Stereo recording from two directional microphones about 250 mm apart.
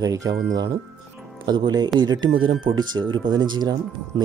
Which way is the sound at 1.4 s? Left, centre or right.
Centre.